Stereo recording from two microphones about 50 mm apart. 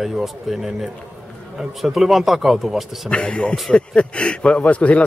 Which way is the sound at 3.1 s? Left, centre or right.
Left.